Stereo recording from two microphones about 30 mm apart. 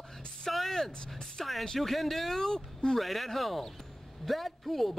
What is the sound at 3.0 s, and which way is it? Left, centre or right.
A man's voice, centre.